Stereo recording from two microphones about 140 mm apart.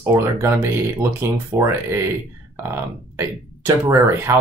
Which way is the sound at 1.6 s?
20° right (ahead or behind).